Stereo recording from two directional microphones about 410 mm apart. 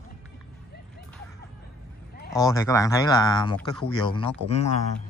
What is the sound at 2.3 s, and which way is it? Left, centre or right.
Speech, centre.